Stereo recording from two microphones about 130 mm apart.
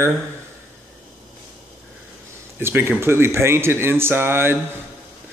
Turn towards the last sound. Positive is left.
turn(degrees=-15)  # may be behind; listen again after turning